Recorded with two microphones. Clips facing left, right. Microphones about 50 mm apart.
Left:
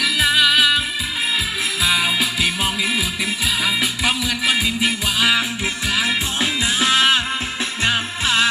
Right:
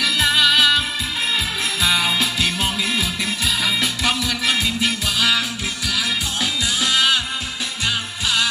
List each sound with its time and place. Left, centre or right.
0.0 s music: centre; by 8.5 s left